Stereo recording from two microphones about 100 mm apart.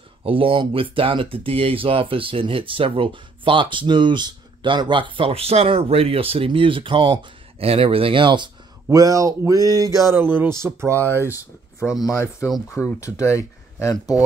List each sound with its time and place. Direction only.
0.2 s speech: 65° right (ahead or behind)
8.9 s a sound: 35° right (ahead or behind)
10.1 s speech: 20° right (ahead or behind)
12.0 s speech: 30° left (ahead or behind)